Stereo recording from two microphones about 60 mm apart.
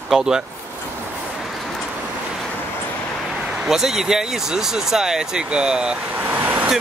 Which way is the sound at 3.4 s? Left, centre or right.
Centre.